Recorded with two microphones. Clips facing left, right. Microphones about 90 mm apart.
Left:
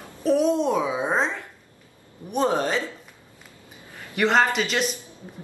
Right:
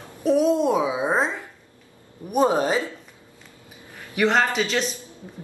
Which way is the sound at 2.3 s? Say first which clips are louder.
Right 3 dB; 15° right (ahead or behind).